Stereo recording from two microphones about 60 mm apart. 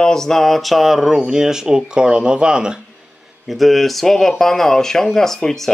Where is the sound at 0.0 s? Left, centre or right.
Centre.